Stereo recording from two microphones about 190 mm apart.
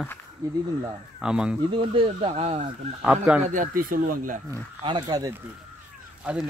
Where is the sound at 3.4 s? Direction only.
45° right (ahead or behind).